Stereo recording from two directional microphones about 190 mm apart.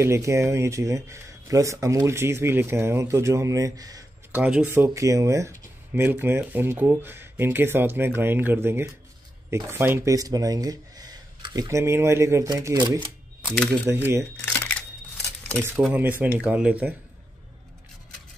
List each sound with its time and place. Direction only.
0.0 s speech: 15° right (ahead or behind)
4.3 s speech: 5° right (ahead or behind); by 13.1 s 20° right (ahead or behind)
13.4 s camera: centre (ahead or behind)
13.8 s speech: 15° right (ahead or behind)
14.3 s camera: 10° left (ahead or behind)
15.8 s speech: 10° right (ahead or behind)